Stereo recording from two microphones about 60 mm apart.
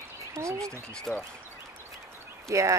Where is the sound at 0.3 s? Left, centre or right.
Right.